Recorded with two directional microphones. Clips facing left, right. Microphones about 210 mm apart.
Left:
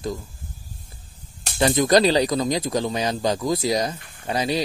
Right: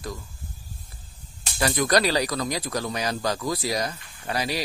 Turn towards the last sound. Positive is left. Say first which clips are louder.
# left 5 dB
turn(degrees=20)  # may be behind; listen again after turning